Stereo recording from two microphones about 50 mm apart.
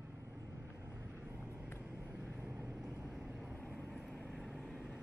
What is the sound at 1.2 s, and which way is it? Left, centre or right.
Vehicle, right.